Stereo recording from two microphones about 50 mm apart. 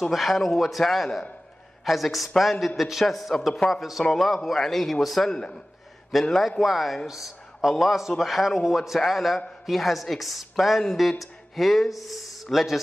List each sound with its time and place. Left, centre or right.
0.1 s a woman's voice: centre
5.3 s a man's voice: centre
6.1 s a woman's voice: centre